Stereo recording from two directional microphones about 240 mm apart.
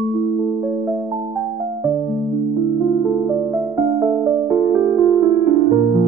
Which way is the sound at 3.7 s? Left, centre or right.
Centre.